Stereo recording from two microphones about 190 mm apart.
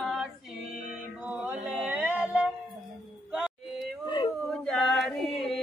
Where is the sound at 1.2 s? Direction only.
5° right (ahead or behind).